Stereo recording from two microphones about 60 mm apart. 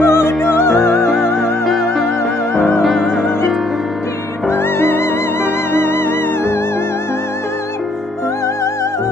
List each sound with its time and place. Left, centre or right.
0.0 s music: left
0.7 s music: centre
4.5 s music: left